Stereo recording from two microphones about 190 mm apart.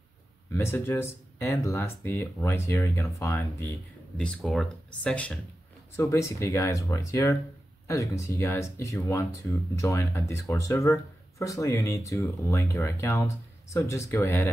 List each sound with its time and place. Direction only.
0.5 s speech: 10° left (ahead or behind)
4.2 s speech: 5° left (ahead or behind)